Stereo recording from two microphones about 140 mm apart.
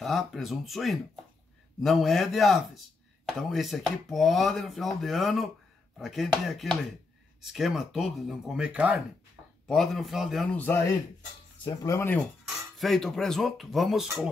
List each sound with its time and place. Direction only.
0.0 s speech: centre (ahead or behind)
10.5 s speech: 10° left (ahead or behind)
11.8 s speech: 20° left (ahead or behind)
12.4 s speech: centre (ahead or behind)